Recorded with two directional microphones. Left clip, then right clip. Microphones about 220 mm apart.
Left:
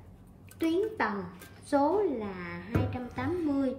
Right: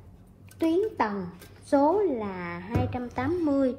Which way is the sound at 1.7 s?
20° right (ahead or behind).